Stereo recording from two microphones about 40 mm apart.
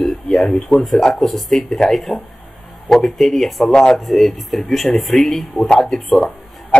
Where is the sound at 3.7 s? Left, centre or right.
Centre.